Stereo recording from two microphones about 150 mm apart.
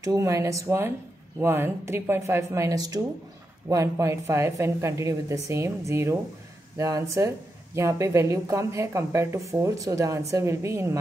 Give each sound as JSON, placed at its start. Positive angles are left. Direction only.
{"t": 0.0, "sound": "speech", "side_deg": -20}